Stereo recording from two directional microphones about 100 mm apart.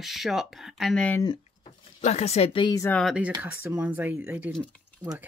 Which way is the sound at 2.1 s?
90° left.